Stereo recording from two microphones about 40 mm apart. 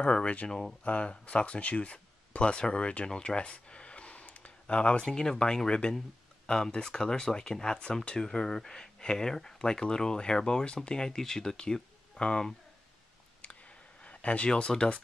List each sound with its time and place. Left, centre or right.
0.0 s speech: left
0.5 s speech: centre
0.8 s speech: left
3.3 s a sound: left
4.6 s speech: left
11.5 s speech: left
14.0 s speech: left